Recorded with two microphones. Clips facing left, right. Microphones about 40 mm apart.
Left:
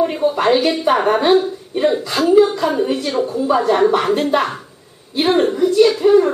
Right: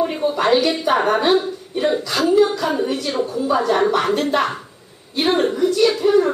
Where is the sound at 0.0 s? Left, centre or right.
Centre.